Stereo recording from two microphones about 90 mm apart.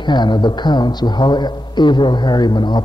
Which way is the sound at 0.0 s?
55° left (ahead or behind).